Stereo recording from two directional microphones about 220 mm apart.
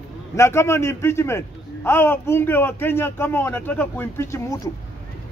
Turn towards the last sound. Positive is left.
turn(degrees=15)  # may be behind; listen again after turning